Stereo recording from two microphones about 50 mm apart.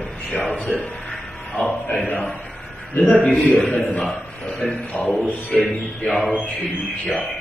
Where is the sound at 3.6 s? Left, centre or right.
Centre.